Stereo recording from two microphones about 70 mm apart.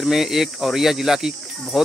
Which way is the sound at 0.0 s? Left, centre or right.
Centre.